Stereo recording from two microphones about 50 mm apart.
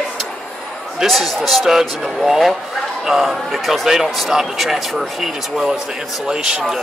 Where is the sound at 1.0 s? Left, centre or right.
Centre.